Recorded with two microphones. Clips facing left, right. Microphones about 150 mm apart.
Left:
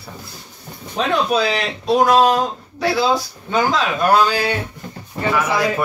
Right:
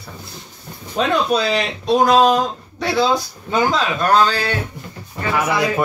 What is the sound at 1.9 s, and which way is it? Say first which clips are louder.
Speech: even; centre (ahead or behind).